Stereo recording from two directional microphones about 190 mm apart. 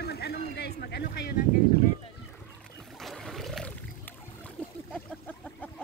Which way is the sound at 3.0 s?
Centre (ahead or behind).